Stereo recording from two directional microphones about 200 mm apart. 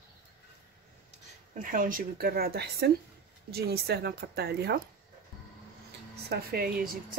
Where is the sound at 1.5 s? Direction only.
40° right (ahead or behind).